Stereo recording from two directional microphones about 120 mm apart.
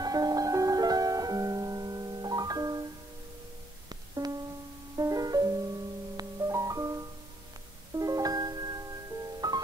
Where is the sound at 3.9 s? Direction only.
35° right (ahead or behind).